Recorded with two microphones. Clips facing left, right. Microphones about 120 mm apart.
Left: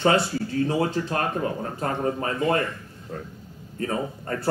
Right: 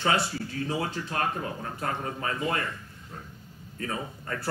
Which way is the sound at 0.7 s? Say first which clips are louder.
Left 7 dB; 40° left (ahead or behind).